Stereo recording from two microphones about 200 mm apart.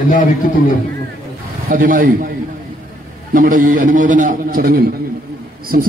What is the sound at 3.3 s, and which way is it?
A man's voice, 40° right (ahead or behind).